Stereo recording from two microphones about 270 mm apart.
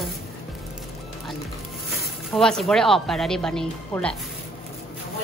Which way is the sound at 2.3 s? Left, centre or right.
Centre.